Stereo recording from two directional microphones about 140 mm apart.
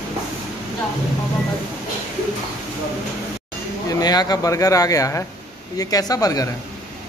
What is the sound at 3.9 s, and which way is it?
Speech, 30° left (ahead or behind).